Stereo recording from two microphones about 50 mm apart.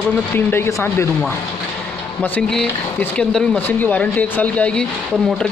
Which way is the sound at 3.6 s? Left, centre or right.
Left.